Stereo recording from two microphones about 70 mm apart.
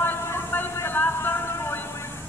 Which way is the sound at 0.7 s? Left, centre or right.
Left.